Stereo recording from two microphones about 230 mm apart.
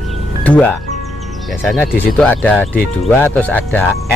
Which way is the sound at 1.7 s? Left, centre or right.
Centre.